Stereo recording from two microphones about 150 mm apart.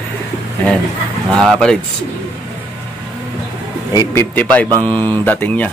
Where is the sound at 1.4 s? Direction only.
5° left (ahead or behind).